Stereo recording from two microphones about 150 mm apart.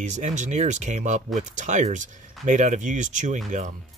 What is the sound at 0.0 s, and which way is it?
Speech, 55° right (ahead or behind).